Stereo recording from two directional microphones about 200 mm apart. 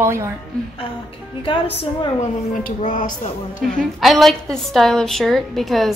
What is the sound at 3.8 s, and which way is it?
A woman's voice, centre (ahead or behind).